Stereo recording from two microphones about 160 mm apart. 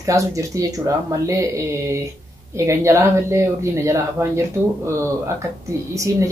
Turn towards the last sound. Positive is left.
turn(degrees=-20)  # may be behind; listen again after turning